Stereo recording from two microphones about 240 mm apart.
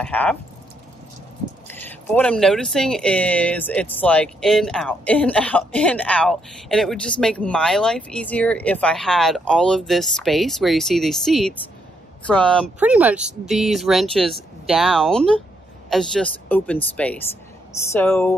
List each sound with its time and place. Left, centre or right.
0.0 s speech: centre
1.7 s speech: centre
12.7 s speech: centre